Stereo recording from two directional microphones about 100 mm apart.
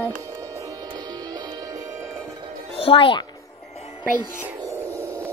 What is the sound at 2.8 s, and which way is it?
Speech, 65° left (ahead or behind).